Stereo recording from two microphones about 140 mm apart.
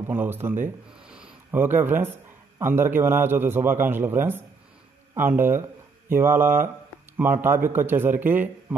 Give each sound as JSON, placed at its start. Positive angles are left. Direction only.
{"t": 0.1, "sound": "a man's voice", "side_deg": -15}